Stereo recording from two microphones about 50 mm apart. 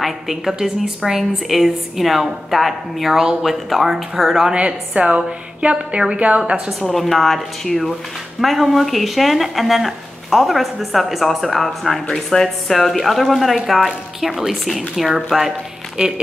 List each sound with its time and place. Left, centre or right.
0.0 s speech: centre
4.6 s a woman's voice: right
6.9 s speech: centre